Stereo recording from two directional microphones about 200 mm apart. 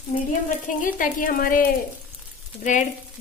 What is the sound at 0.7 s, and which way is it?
A woman's voice, 45° left (ahead or behind).